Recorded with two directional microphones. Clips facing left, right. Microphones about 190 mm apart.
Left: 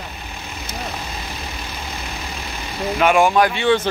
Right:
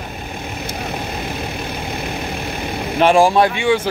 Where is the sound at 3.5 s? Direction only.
10° right (ahead or behind).